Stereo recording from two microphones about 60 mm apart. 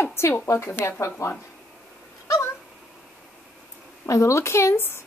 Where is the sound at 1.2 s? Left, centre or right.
Left.